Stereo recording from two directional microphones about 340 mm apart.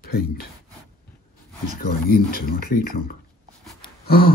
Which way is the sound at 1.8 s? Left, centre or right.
Left.